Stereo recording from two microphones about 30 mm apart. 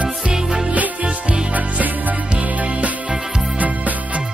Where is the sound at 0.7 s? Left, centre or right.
Right.